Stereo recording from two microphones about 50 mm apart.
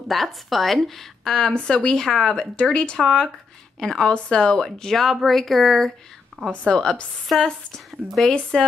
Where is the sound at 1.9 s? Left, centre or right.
Centre.